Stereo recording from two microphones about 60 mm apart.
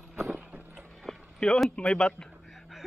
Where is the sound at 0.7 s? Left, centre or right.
Centre.